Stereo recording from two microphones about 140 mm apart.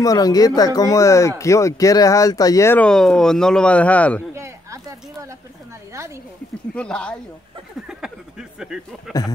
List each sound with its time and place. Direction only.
0.0 s speech: 25° left (ahead or behind)
2.8 s speech: 5° left (ahead or behind)
4.3 s a sound: 20° right (ahead or behind)
6.7 s speech: 5° left (ahead or behind)
7.8 s speech: 5° right (ahead or behind)